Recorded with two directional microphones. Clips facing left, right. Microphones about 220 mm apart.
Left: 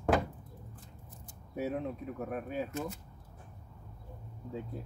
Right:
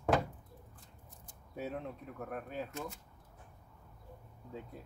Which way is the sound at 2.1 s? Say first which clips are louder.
Left 3 dB; 10° left (ahead or behind).